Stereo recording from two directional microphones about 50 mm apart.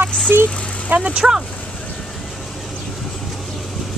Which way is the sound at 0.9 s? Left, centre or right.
Right.